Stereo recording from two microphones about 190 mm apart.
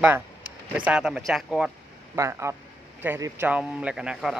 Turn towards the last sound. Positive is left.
turn(degrees=-5)  # may be behind; listen again after turning